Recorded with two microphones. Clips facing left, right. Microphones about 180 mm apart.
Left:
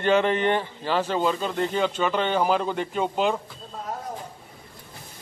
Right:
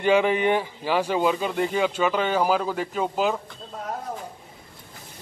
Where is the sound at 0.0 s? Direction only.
10° right (ahead or behind).